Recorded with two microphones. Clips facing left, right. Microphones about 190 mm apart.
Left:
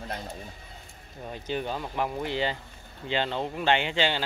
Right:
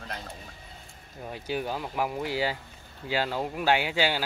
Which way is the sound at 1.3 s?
5° right (ahead or behind).